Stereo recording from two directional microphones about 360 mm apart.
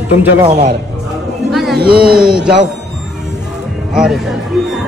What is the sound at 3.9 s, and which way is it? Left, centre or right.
Speech, centre.